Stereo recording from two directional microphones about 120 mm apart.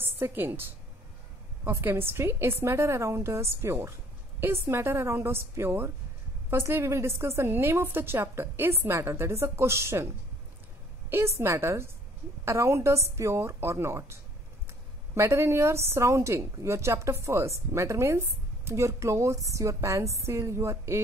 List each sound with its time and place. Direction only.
0.0 s a woman's voice: 20° right (ahead or behind)
11.1 s a woman's voice: 20° right (ahead or behind)